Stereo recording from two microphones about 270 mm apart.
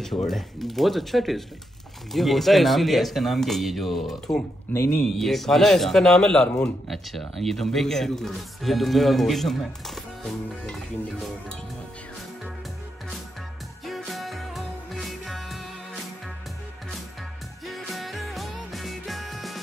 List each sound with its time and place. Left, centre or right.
0.0 s speech: centre
13.8 s music: centre
17.6 s music: centre